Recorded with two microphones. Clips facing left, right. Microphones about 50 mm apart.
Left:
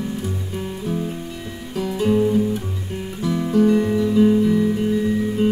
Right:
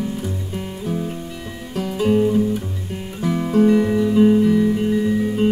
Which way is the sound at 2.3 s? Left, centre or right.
Centre.